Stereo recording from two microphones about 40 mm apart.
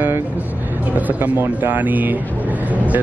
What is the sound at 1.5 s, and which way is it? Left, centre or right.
Speech, right.